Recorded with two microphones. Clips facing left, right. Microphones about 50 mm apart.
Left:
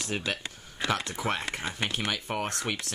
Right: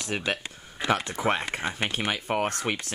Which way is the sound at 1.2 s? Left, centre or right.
Right.